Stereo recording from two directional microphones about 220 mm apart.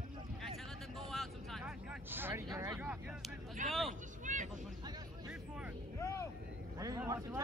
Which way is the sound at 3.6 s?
35° right (ahead or behind).